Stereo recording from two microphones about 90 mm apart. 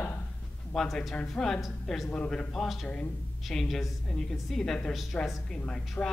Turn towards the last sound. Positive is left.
turn(degrees=10)  # may be behind; listen again after turning